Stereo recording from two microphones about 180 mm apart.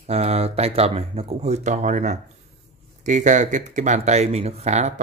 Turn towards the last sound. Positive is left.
turn(degrees=-40)  # may be behind; listen again after turning